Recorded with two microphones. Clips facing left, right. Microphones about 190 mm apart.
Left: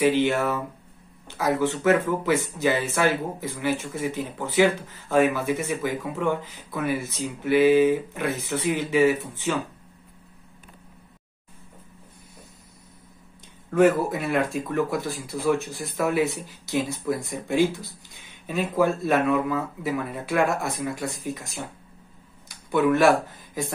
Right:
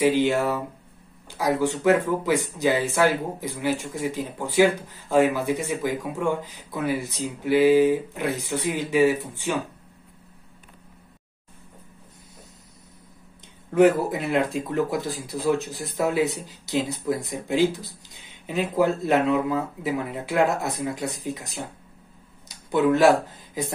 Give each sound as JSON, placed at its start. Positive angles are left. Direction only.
{"t": 0.2, "sound": "speech", "side_deg": -15}
{"t": 13.7, "sound": "speech", "side_deg": -20}